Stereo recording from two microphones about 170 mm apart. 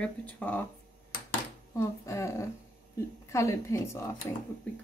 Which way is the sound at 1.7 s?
15° left (ahead or behind).